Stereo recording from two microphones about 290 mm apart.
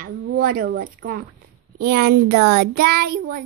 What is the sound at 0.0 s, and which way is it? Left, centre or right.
A woman's voice, right.